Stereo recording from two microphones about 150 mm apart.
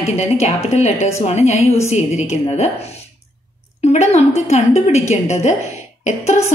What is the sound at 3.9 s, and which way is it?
Speech, 45° left (ahead or behind).